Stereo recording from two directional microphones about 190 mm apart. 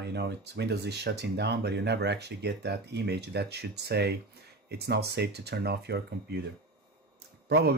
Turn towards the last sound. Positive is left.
turn(degrees=-60)  # may be behind; listen again after turning